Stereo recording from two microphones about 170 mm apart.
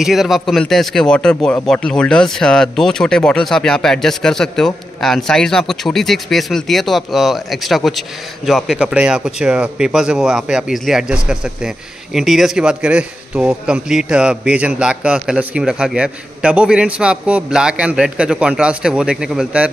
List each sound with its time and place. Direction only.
0.0 s a man's voice: centre (ahead or behind)